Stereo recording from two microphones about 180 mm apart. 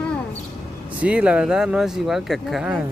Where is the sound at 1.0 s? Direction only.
5° right (ahead or behind).